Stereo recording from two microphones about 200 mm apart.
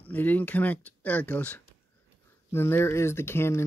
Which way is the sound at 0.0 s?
10° left (ahead or behind).